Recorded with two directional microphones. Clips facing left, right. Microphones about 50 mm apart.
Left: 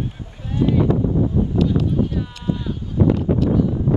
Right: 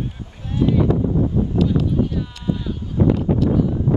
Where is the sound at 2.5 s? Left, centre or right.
Centre.